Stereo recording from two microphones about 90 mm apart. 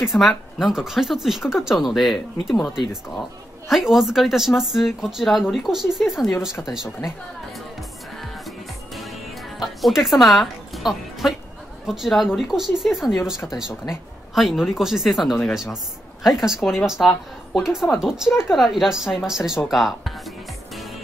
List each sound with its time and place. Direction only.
0.0 s speech: centre (ahead or behind)
8.2 s music: centre (ahead or behind)
11.8 s speech: 5° right (ahead or behind)